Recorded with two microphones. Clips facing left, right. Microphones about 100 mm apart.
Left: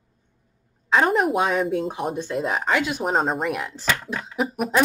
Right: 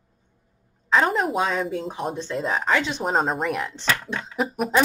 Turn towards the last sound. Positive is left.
turn(degrees=0)  # may be behind; listen again after turning